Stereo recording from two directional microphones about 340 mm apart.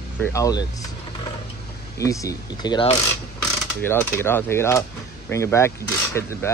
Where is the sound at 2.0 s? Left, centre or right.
Centre.